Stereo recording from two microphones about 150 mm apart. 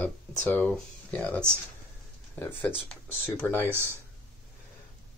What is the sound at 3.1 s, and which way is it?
Speech, 15° left (ahead or behind).